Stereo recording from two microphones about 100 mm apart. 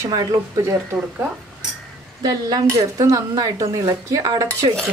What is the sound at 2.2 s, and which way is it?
A woman's voice, 40° right (ahead or behind).